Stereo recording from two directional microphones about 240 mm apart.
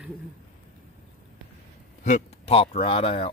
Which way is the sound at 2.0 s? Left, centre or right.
Left.